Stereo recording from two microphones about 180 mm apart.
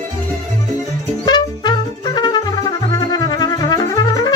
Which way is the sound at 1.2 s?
25° left (ahead or behind).